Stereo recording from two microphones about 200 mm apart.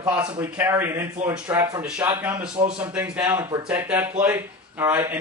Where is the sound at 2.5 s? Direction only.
30° right (ahead or behind).